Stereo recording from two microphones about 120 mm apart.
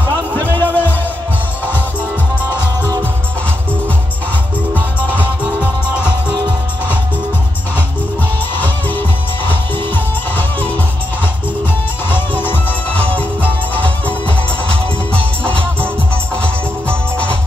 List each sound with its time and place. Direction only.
0.4 s music: 15° left (ahead or behind)
5.6 s music: 20° left (ahead or behind)
8.5 s music: 15° left (ahead or behind)
12.1 s music: 15° left (ahead or behind)
16.3 s music: 10° left (ahead or behind)